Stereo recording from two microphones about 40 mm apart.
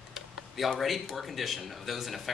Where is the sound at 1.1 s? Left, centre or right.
Centre.